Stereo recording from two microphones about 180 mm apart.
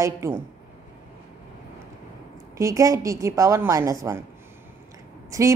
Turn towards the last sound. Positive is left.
turn(degrees=-15)  # may be behind; listen again after turning